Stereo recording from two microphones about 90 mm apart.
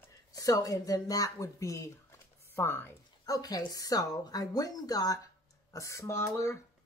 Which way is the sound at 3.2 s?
45° left (ahead or behind).